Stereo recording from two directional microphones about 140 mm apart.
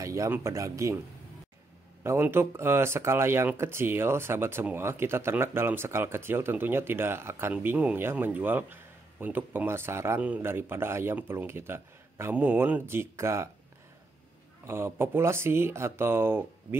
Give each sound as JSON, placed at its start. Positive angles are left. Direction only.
{"t": 0.0, "sound": "speech", "side_deg": -25}
{"t": 2.0, "sound": "speech", "side_deg": -15}
{"t": 14.7, "sound": "speech", "side_deg": -15}